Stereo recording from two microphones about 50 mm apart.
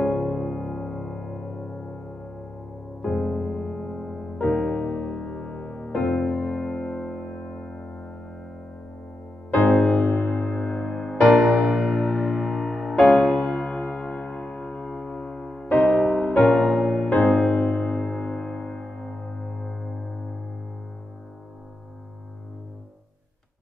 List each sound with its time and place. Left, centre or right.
0.0 s music: centre
3.0 s music: centre
5.3 s music: left
9.5 s music: left
9.9 s music: left
11.3 s music: centre
15.7 s music: left
16.0 s music: centre
17.3 s music: centre
17.6 s music: left; by 20.2 s centre